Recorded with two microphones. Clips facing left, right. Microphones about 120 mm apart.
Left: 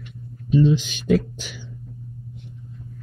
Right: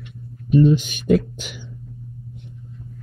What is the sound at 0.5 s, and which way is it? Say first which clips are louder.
Speech: right 3 dB; 55° right (ahead or behind).